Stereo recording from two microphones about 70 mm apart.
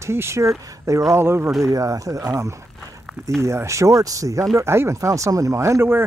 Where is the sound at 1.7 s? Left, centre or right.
Right.